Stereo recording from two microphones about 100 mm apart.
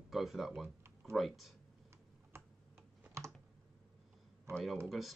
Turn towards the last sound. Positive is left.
turn(degrees=0)  # may be behind; listen again after turning